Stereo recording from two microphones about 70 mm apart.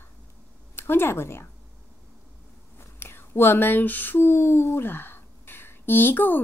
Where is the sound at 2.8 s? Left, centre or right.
Left.